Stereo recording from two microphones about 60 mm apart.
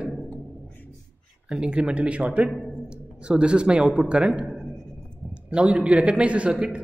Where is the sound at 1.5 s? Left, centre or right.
Centre.